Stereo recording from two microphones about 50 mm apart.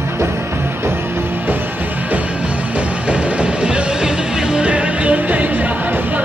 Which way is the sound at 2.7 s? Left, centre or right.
Right.